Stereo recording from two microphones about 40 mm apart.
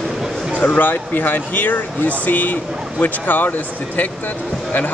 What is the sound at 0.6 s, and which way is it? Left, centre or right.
Speech, left.